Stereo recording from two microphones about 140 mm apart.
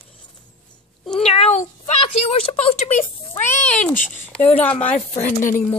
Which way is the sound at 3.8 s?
10° left (ahead or behind).